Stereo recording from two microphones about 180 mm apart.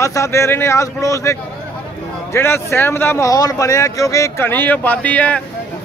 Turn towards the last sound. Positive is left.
turn(degrees=10)  # may be behind; listen again after turning